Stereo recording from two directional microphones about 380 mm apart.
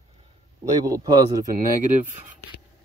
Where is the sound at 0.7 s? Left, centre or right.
Centre.